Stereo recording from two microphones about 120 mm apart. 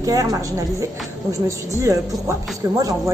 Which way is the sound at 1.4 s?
25° right (ahead or behind).